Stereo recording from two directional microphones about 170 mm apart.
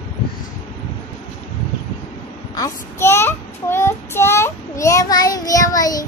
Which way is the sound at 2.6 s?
15° left (ahead or behind).